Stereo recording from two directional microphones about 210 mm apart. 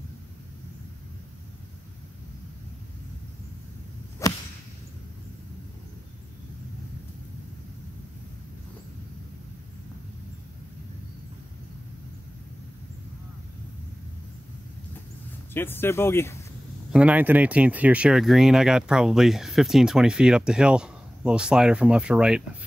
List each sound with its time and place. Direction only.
4.2 s whip: 15° left (ahead or behind)
15.5 s speech: 10° left (ahead or behind)
16.9 s speech: 5° right (ahead or behind)